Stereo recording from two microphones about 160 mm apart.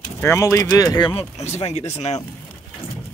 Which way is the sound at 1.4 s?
45° left (ahead or behind).